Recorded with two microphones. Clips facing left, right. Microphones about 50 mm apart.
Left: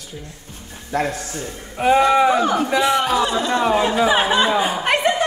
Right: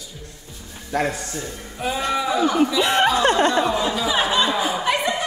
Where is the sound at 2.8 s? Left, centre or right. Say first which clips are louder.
Even; right.